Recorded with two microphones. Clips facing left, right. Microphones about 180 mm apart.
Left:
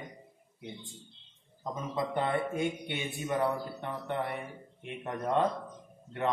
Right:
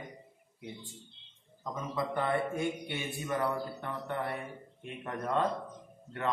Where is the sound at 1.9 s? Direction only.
20° left (ahead or behind).